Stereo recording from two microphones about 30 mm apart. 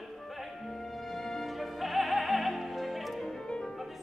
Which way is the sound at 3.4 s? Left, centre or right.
Left.